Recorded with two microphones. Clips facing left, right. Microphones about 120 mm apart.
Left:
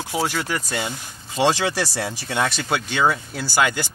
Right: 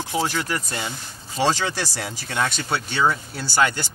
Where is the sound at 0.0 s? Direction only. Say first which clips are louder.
Even; 10° left (ahead or behind).